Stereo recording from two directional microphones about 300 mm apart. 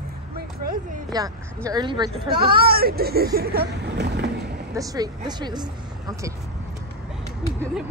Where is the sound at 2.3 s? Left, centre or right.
Right.